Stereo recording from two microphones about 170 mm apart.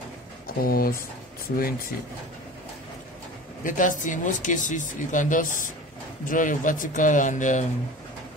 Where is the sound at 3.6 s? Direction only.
50° left (ahead or behind).